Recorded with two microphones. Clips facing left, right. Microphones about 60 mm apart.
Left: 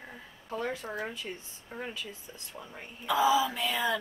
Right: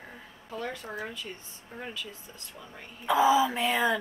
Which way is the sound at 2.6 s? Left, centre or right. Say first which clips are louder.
Left 2 dB; left.